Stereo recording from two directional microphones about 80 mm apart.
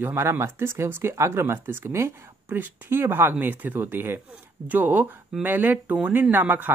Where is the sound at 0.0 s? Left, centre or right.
Right.